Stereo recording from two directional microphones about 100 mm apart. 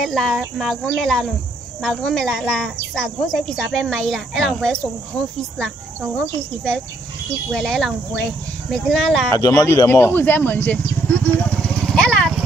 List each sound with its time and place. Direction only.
0.0 s speech: 5° left (ahead or behind)
6.1 s speech: 5° left (ahead or behind)
9.3 s speech: 35° left (ahead or behind); by 11.1 s 15° left (ahead or behind)
11.6 s vehicle: 5° left (ahead or behind)